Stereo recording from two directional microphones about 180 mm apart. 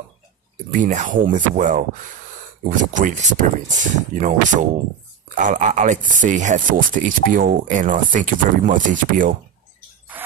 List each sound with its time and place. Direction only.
0.7 s speech: 45° right (ahead or behind)